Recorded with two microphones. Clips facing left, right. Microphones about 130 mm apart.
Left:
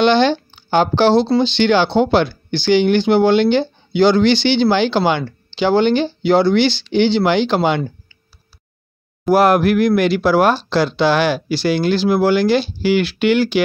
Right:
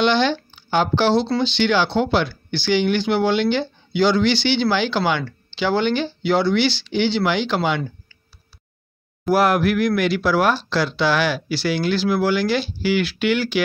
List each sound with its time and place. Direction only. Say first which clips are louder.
0.2 s speech: left 5 dB; 30° left (ahead or behind)
9.3 s speech: left 5 dB; 25° left (ahead or behind)